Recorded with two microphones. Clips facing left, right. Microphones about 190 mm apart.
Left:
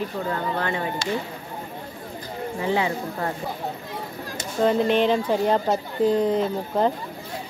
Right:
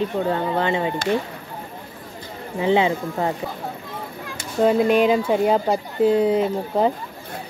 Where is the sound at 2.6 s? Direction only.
20° right (ahead or behind).